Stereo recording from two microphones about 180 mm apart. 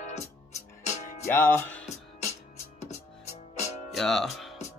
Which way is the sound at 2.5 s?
40° left (ahead or behind).